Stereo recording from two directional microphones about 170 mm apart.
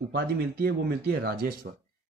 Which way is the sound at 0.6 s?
65° right (ahead or behind).